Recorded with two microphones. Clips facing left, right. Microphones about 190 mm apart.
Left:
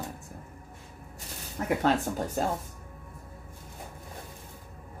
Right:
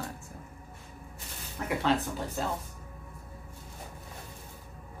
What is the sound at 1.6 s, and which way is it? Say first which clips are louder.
Speech: left 3 dB; 45° left (ahead or behind).